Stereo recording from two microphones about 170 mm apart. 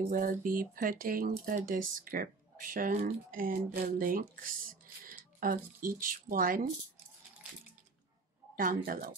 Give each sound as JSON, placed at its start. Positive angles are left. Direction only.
{"t": 0.1, "sound": "speech", "side_deg": -55}
{"t": 8.5, "sound": "speech", "side_deg": -55}